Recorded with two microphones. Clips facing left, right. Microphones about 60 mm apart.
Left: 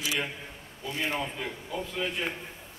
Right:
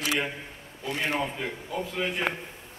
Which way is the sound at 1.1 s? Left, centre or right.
Centre.